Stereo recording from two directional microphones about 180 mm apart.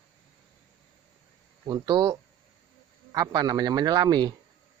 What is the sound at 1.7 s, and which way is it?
Speech, 20° right (ahead or behind).